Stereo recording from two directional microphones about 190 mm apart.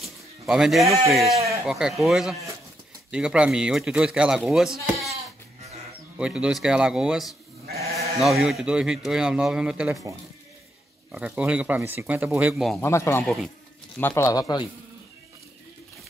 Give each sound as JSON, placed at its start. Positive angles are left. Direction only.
{"t": 0.0, "sound": "speech", "side_deg": 0}
{"t": 6.1, "sound": "speech", "side_deg": -5}
{"t": 11.1, "sound": "speech", "side_deg": -5}
{"t": 12.8, "sound": "speech", "side_deg": 15}